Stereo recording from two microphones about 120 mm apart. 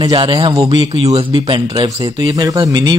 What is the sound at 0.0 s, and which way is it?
Speech, 40° right (ahead or behind).